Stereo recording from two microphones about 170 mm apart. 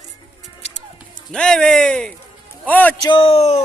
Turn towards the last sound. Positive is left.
turn(degrees=40)  # may be behind; listen again after turning